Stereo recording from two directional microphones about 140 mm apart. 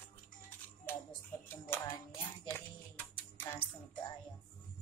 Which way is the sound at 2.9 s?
10° left (ahead or behind).